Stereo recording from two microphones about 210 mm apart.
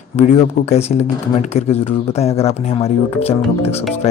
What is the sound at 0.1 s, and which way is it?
Speech, 30° left (ahead or behind).